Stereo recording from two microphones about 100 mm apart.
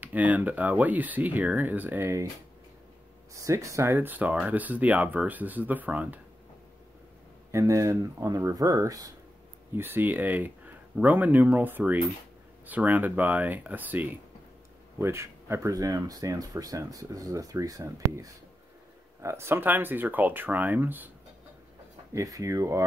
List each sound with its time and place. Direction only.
0.0 s speech: 15° right (ahead or behind)
3.4 s speech: 30° right (ahead or behind)
7.5 s speech: 30° right (ahead or behind)
9.8 s speech: 20° right (ahead or behind)
22.1 s speech: 35° right (ahead or behind)